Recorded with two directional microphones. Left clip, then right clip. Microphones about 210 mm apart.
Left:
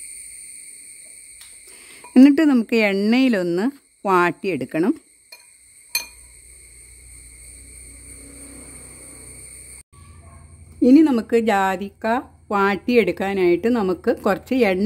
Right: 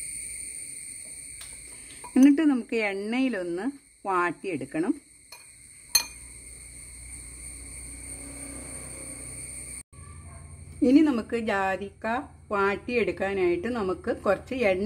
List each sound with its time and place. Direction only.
2.1 s speech: 55° left (ahead or behind)
10.8 s speech: 40° left (ahead or behind)